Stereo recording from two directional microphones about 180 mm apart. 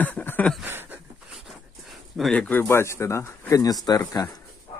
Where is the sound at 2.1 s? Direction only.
5° left (ahead or behind); by 4.3 s 20° left (ahead or behind).